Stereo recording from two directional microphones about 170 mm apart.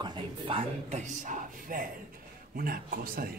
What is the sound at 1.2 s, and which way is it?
Speech, 50° right (ahead or behind).